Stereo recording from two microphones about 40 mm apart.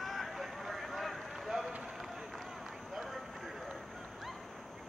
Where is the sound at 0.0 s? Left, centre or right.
Centre.